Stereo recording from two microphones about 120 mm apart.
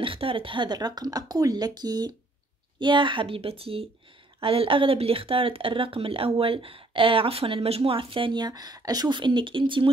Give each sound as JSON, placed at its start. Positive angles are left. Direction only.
{"t": 0.0, "sound": "speech", "side_deg": -50}